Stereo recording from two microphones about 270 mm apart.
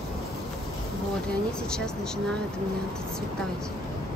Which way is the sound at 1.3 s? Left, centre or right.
Centre.